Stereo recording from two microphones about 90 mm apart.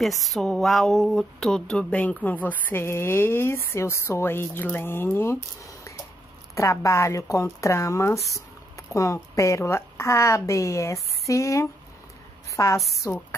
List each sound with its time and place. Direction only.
0.0 s a woman's voice: centre (ahead or behind); by 13.2 s 30° left (ahead or behind)